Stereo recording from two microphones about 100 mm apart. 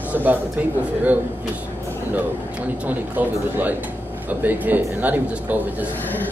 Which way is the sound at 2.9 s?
15° right (ahead or behind).